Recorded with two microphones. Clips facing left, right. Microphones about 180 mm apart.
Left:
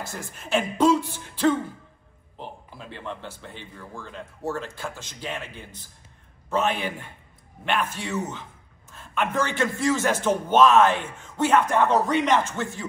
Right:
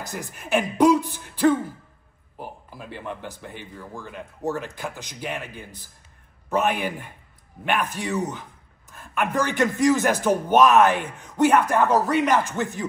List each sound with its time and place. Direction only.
0.0 s a man's voice: 15° right (ahead or behind)
12.5 s a man's voice: 20° right (ahead or behind)